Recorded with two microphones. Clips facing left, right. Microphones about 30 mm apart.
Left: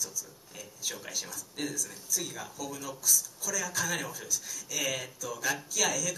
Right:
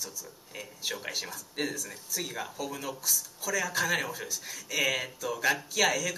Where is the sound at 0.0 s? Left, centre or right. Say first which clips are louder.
Left 2 dB; right.